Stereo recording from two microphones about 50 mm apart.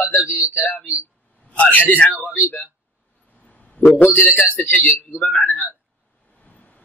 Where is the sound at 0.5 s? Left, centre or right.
Left.